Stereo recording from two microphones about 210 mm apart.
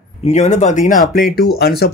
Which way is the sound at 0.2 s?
35° left (ahead or behind).